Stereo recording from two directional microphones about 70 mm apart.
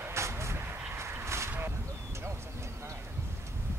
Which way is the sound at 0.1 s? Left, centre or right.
Right.